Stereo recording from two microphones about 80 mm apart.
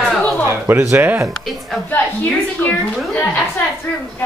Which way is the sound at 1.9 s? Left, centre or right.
Centre.